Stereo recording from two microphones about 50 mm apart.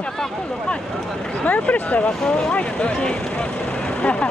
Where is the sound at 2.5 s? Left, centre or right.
Left.